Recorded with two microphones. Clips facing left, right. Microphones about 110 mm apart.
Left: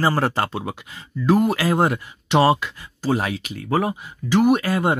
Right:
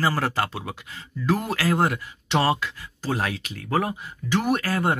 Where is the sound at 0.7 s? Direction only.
15° left (ahead or behind).